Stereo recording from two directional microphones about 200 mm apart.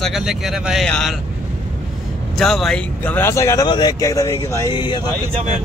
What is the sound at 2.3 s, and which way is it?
Speech, centre (ahead or behind).